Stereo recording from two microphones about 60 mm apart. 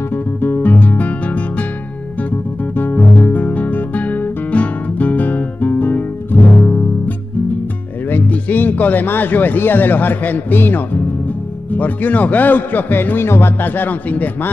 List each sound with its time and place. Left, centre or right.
0.1 s music: left
2.7 s guitar: left
8.1 s a man's voice: left